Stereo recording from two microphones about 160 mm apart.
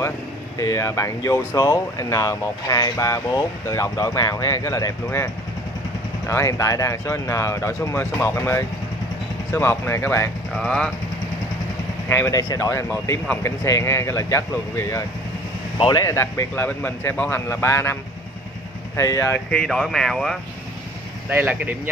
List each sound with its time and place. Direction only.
0.6 s speech: 20° left (ahead or behind)
10.5 s speech: 5° left (ahead or behind)
12.1 s speech: 15° left (ahead or behind)
18.9 s speech: 20° left (ahead or behind); by 20.3 s 5° left (ahead or behind)
21.3 s speech: 10° right (ahead or behind)